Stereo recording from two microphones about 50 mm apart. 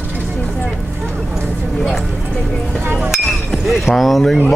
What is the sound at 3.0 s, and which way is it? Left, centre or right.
Chink, centre.